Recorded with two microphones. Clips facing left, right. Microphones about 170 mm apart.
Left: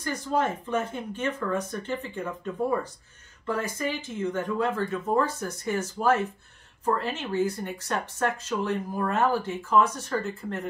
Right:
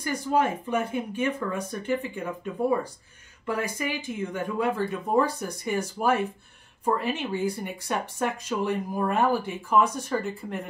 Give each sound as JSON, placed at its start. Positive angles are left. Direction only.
{"t": 0.0, "sound": "speech", "side_deg": -10}